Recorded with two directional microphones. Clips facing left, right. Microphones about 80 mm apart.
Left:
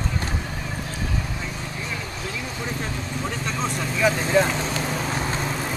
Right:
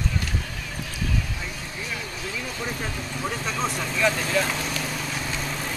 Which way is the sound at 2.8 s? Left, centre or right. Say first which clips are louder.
Left 1 dB; centre.